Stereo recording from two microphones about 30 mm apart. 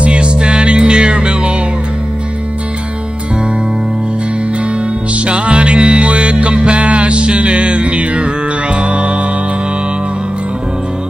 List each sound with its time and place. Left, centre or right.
0.0 s music: right
5.1 s music: right